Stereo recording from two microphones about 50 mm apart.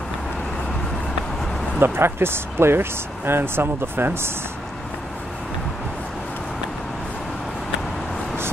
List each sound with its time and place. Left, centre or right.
1.8 s speech: right